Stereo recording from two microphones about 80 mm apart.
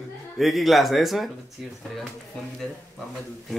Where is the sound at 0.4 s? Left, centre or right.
Centre.